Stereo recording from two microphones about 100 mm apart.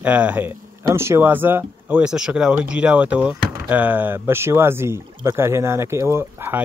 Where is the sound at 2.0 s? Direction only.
5° right (ahead or behind); by 6.6 s 20° right (ahead or behind).